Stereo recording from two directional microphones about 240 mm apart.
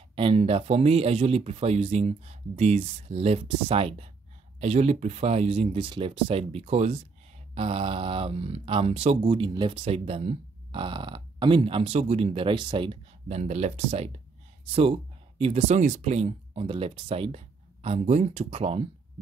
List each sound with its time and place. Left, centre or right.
0.1 s speech: right